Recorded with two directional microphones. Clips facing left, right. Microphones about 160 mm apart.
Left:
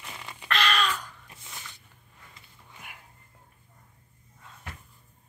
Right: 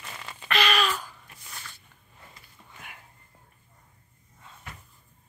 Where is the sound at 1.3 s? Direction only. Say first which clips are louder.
Left 1 dB; 20° left (ahead or behind).